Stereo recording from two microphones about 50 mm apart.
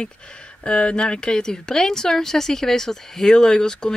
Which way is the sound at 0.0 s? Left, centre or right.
Centre.